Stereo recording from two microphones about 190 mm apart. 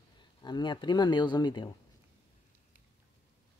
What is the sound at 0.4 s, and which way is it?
Speech, 25° left (ahead or behind).